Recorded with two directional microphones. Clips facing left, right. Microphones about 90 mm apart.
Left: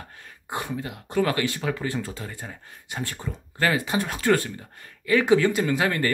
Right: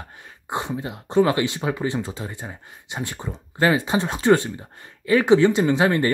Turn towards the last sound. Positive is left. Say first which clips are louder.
# right 5 dB
turn(degrees=-25)  # may be behind; listen again after turning